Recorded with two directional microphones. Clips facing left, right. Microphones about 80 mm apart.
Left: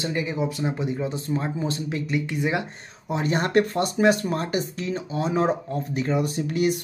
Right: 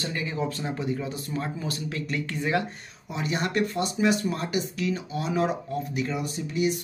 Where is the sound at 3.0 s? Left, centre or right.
Left.